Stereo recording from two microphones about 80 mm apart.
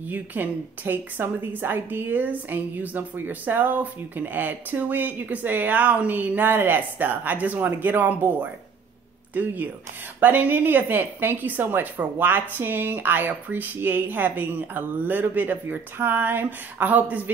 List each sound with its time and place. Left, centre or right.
0.1 s a woman's voice: right